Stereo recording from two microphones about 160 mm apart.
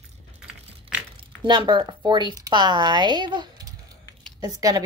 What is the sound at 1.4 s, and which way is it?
Speech, 30° right (ahead or behind).